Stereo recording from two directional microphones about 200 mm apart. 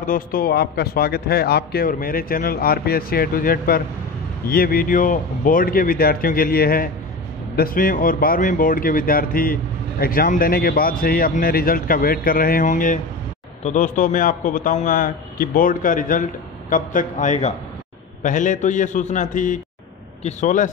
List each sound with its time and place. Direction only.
0.0 s a man's voice: 45° left (ahead or behind)